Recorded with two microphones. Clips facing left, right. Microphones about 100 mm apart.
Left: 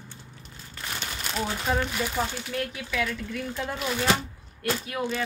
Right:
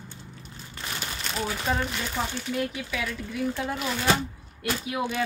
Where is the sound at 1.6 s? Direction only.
Centre (ahead or behind).